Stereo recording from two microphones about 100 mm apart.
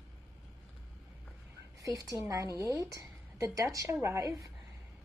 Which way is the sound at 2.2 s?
35° right (ahead or behind).